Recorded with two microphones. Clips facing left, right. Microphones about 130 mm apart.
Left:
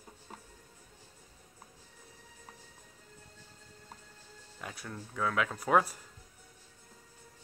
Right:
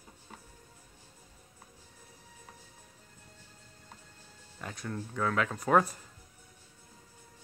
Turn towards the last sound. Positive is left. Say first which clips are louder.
# right 2 dB
turn(degrees=5)  # may be behind; listen again after turning